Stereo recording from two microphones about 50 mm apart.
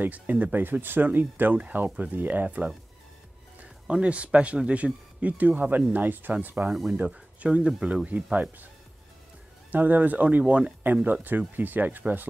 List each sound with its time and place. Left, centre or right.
0.0 s speech: right
3.8 s speech: right
7.1 s speech: right
9.7 s speech: right
11.2 s speech: right